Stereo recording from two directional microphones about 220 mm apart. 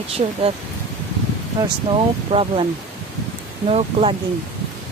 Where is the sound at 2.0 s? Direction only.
25° right (ahead or behind).